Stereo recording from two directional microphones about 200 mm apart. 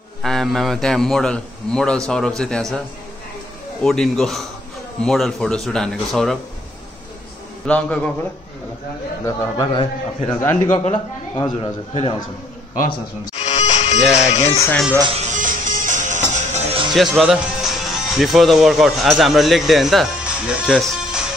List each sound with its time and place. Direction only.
0.2 s a man's voice: centre (ahead or behind)
3.8 s a man's voice: centre (ahead or behind)
7.6 s a man's voice: 5° left (ahead or behind)
9.2 s a man's voice: 20° left (ahead or behind)
10.7 s a man's voice: 35° left (ahead or behind)
11.3 s a man's voice: 20° left (ahead or behind)
11.9 s a man's voice: 30° left (ahead or behind)
13.4 s music: 35° left (ahead or behind)
14.6 s a man's voice: 10° left (ahead or behind)
15.1 s music: 40° right (ahead or behind)
16.9 s speech: centre (ahead or behind)